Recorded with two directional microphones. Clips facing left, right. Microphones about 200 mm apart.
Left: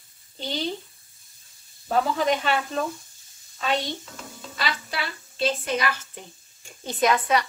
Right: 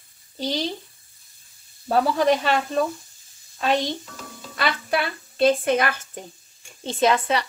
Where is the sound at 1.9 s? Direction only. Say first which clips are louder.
Right 3 dB; 40° right (ahead or behind).